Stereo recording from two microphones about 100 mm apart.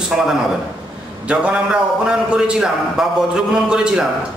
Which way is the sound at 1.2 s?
15° right (ahead or behind).